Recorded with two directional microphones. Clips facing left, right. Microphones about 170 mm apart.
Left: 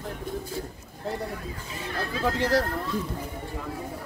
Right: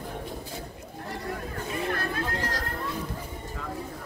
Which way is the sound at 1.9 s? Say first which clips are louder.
Left 1 dB; 55° right (ahead or behind).